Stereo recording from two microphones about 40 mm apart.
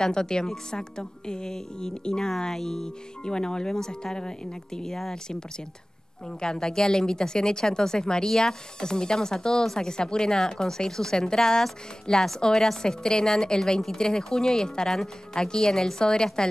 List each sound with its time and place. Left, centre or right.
0.0 s speech: centre
4.8 s speech: centre
6.4 s speech: centre